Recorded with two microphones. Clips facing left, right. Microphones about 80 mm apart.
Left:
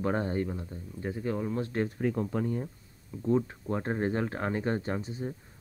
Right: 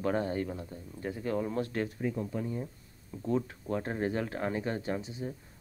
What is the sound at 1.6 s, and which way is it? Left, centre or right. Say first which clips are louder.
Speech: left 2 dB; left.